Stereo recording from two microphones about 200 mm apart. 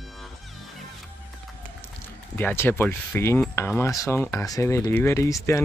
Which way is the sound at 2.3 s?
10° left (ahead or behind).